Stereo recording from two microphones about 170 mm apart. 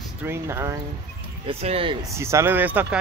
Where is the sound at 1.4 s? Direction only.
35° right (ahead or behind).